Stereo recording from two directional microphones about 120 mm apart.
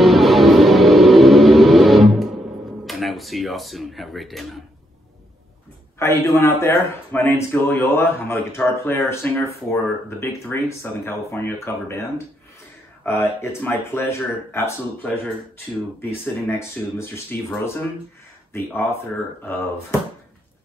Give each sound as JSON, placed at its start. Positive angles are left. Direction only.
{"t": 0.0, "sound": "music", "side_deg": 0}
{"t": 2.8, "sound": "speech", "side_deg": 0}
{"t": 5.9, "sound": "speech", "side_deg": 20}
{"t": 13.0, "sound": "speech", "side_deg": 20}
{"t": 16.0, "sound": "speech", "side_deg": 20}
{"t": 18.5, "sound": "speech", "side_deg": 20}